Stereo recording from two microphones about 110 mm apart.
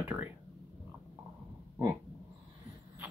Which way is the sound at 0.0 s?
15° right (ahead or behind).